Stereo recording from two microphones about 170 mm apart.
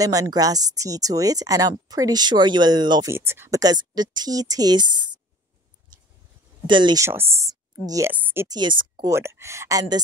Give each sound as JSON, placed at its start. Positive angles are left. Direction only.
{"t": 0.0, "sound": "speech", "side_deg": -20}
{"t": 6.7, "sound": "speech", "side_deg": -25}
{"t": 7.1, "sound": "speech", "side_deg": -15}
{"t": 8.5, "sound": "speech", "side_deg": -25}
{"t": 9.0, "sound": "speech", "side_deg": -15}